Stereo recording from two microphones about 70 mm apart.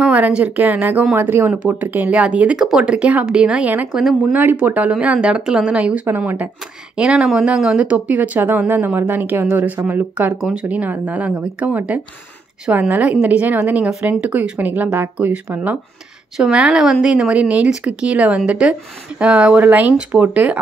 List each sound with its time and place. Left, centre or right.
0.0 s speech: centre
3.9 s speech: centre
4.2 s speech: right
7.0 s speech: centre; by 10.3 s right
10.3 s speech: centre
16.3 s speech: centre